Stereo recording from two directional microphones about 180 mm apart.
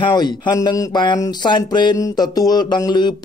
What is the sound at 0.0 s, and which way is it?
Speech, 25° left (ahead or behind).